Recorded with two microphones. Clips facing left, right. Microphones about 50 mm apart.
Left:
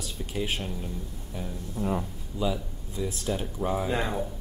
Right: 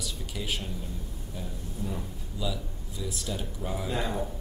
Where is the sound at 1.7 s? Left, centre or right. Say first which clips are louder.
Left 8 dB; left.